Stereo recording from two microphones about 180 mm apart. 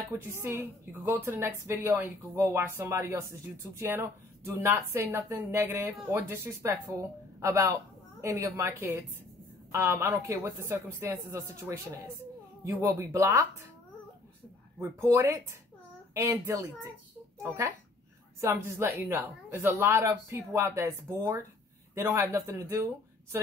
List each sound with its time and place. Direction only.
0.4 s a woman's voice: 15° right (ahead or behind)
14.8 s a woman's voice: 15° right (ahead or behind)